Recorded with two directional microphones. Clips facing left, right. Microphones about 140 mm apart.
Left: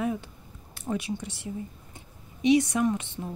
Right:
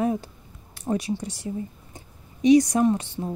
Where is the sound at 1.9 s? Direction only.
40° right (ahead or behind).